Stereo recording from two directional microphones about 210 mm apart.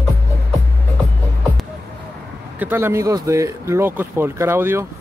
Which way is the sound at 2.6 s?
10° right (ahead or behind).